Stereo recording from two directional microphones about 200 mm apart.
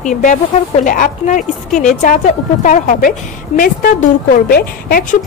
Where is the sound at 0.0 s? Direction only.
40° left (ahead or behind).